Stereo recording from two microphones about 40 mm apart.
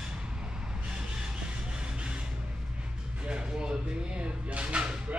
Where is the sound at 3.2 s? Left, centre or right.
Right.